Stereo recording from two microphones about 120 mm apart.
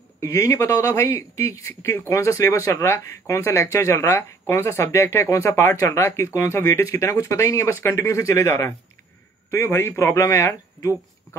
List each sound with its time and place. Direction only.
0.2 s a man's voice: 25° left (ahead or behind)